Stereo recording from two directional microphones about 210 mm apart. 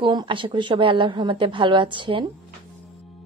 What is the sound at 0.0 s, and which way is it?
A woman's voice, 20° right (ahead or behind).